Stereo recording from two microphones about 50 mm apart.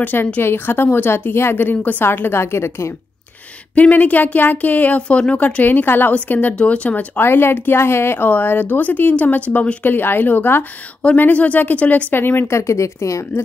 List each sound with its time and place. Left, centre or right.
0.0 s a woman's voice: left
3.7 s speech: left
5.0 s speech: left
7.2 s a woman's voice: left
8.3 s speech: left
12.1 s a woman's voice: left
12.4 s speech: left